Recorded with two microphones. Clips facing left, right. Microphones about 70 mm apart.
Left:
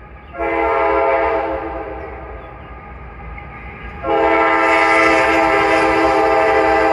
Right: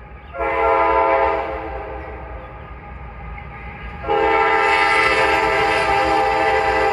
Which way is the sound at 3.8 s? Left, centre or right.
Centre.